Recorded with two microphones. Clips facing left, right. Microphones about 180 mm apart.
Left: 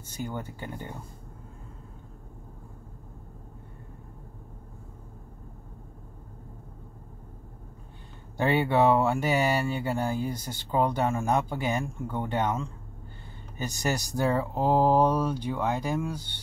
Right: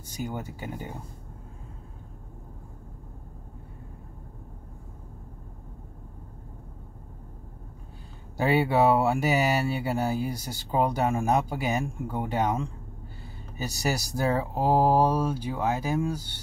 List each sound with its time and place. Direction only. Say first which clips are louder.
0.0 s speech: right 1 dB; 10° right (ahead or behind)
8.4 s speech: right 1 dB; 10° right (ahead or behind)